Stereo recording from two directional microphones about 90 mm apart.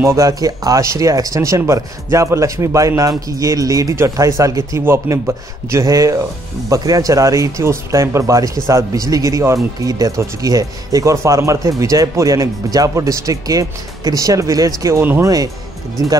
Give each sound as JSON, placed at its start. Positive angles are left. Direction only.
{"t": 0.0, "sound": "speech", "side_deg": -30}
{"t": 0.3, "sound": "speech", "side_deg": -40}
{"t": 15.0, "sound": "speech", "side_deg": -25}
{"t": 15.2, "sound": "speech", "side_deg": -40}